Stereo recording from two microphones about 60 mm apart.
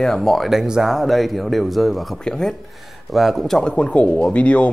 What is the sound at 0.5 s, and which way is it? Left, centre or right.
Speech, centre.